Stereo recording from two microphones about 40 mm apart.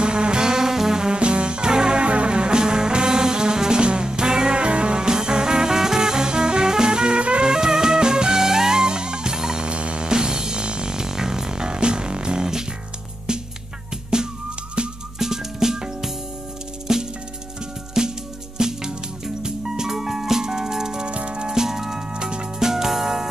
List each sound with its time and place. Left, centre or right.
0.0 s music: right
9.7 s music: right
15.1 s music: centre
21.1 s music: right
21.5 s music: centre
22.1 s music: right
22.7 s music: centre